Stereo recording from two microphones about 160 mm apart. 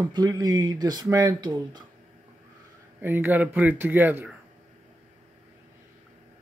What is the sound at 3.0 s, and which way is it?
Speech, 15° right (ahead or behind).